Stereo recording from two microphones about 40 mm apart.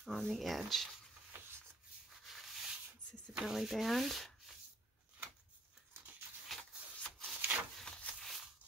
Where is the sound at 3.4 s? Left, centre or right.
Centre.